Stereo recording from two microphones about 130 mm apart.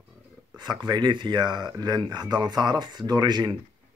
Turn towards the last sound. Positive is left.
turn(degrees=-35)  # may be behind; listen again after turning